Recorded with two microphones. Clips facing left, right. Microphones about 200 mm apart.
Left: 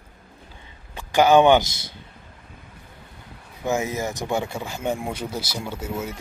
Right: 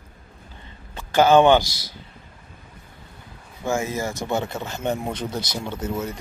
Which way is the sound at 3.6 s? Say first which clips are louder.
Even; 20° left (ahead or behind).